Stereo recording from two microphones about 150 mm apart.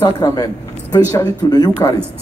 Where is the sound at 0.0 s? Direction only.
25° left (ahead or behind).